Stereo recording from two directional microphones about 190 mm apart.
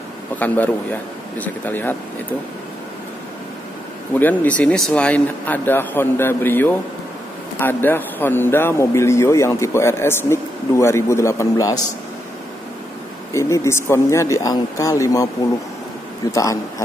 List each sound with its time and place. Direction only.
1.4 s speech: 10° left (ahead or behind)
4.2 s speech: 10° left (ahead or behind)
13.3 s speech: 15° left (ahead or behind)
16.3 s speech: 15° left (ahead or behind)